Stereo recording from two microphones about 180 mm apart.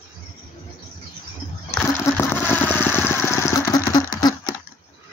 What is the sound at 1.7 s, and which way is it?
Engine, 15° left (ahead or behind).